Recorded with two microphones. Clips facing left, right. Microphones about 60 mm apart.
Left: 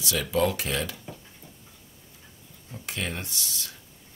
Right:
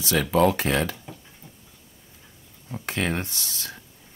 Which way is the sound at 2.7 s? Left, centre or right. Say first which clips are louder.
Right 6 dB; right.